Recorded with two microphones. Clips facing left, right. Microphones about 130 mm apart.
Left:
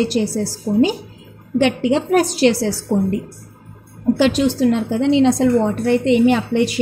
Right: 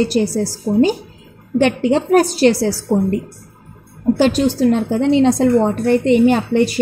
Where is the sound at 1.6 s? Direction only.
45° right (ahead or behind).